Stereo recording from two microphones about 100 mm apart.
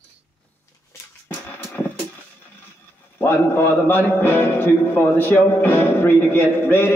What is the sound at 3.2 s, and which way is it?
A man's voice, 20° left (ahead or behind).